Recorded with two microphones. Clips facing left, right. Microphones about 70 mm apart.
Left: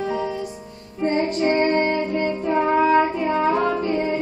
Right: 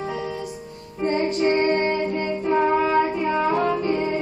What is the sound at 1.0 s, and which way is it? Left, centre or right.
Music, left.